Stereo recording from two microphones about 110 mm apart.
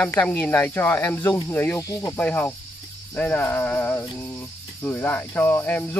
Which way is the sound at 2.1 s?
15° left (ahead or behind).